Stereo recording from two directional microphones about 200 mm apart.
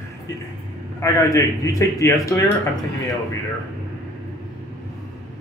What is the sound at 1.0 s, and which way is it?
A man's voice, 15° left (ahead or behind).